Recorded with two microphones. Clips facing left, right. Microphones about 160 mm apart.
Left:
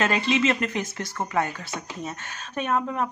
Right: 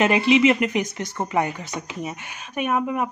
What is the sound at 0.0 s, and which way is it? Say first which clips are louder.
Speech: right 6 dB; 15° right (ahead or behind).